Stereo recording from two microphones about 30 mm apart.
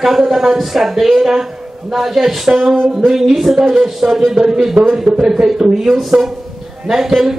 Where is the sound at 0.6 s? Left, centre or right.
Centre.